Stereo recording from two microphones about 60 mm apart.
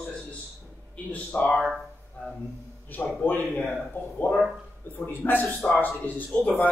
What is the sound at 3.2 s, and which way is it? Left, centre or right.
Speech, left.